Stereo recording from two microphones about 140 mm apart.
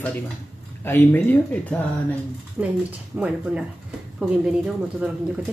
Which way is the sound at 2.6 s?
10° right (ahead or behind).